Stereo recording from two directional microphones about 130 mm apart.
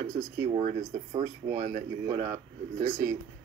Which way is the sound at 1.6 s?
65° right (ahead or behind).